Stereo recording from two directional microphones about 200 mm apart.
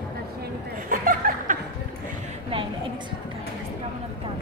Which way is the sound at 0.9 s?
45° right (ahead or behind).